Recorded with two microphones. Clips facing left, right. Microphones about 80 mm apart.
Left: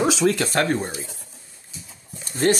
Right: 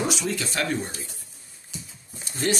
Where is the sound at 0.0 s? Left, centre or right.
Left.